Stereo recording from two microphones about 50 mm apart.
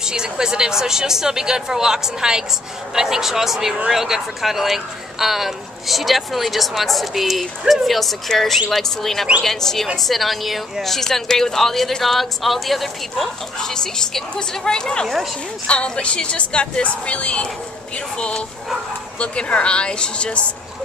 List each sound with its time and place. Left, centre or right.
0.0 s a woman's voice: centre; by 20.4 s left